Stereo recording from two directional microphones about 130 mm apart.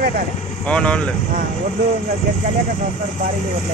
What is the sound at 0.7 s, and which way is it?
Speech, 10° left (ahead or behind).